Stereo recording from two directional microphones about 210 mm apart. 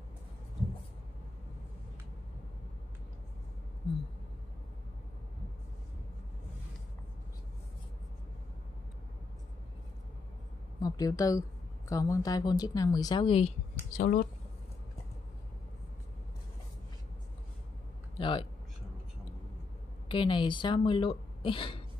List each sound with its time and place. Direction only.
10.8 s speech: 15° left (ahead or behind)
13.9 s speech: 40° left (ahead or behind)
18.1 s a sound: 25° left (ahead or behind)
20.1 s speech: 25° left (ahead or behind)